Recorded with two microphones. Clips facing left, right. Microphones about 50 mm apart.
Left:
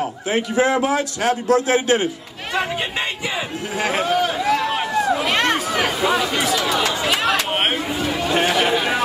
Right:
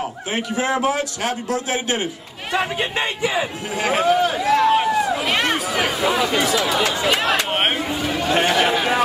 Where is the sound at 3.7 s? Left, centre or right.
Centre.